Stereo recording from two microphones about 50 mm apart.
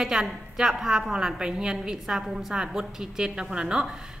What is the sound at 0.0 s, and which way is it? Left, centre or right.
A woman's voice, centre.